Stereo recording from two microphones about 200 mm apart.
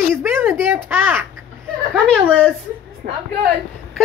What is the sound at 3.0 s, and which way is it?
Speech, 50° right (ahead or behind).